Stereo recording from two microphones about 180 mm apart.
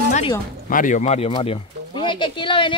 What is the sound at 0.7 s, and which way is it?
Speech, 45° left (ahead or behind).